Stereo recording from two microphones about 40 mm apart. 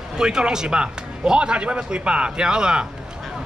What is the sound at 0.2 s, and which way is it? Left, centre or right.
Speech, centre.